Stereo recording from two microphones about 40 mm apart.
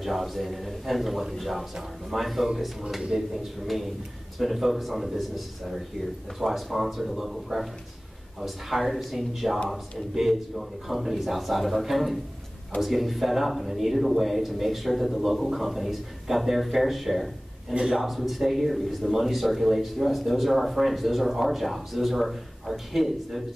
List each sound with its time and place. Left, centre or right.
0.0 s speech: centre